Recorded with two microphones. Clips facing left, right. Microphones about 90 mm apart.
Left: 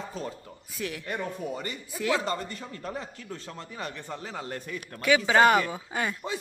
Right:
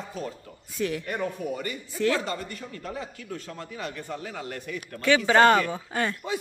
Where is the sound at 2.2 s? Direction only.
30° left (ahead or behind).